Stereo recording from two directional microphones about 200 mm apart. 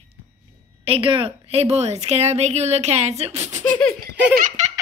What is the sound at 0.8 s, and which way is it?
A woman's voice, 30° right (ahead or behind).